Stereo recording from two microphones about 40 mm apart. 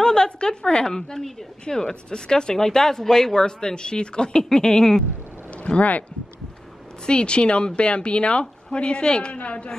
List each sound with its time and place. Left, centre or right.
0.0 s a woman's voice: left
5.6 s speech: left
7.1 s a woman's voice: left